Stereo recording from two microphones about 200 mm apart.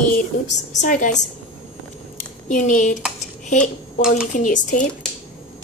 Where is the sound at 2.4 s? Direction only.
40° left (ahead or behind).